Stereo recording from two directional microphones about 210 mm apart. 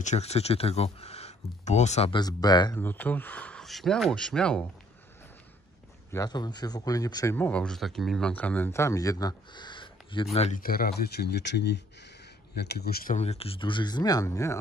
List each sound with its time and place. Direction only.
0.0 s speech: 30° left (ahead or behind)
2.8 s speech: 10° left (ahead or behind)
6.1 s speech: 20° left (ahead or behind)
10.6 s speech: 45° left (ahead or behind); by 14.6 s 15° left (ahead or behind)